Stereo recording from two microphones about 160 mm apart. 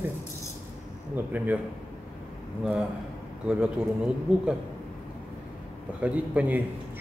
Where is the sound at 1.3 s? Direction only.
10° right (ahead or behind).